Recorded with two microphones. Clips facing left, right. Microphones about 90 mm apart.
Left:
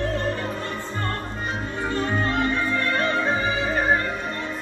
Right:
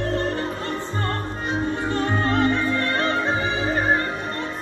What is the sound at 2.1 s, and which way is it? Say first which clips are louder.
Music: right 4 dB; 35° right (ahead or behind).